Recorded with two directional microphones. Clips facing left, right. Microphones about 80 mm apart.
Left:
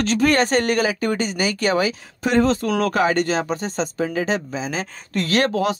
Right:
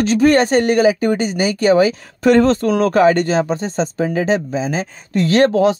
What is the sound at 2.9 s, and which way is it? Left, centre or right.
Speech, right.